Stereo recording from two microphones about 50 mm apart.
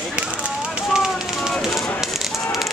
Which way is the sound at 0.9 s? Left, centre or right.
Centre.